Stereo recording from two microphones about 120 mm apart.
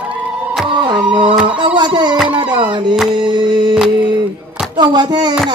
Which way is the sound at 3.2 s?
40° right (ahead or behind).